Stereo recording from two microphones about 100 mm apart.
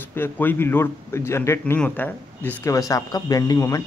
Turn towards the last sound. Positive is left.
turn(degrees=35)  # may be behind; listen again after turning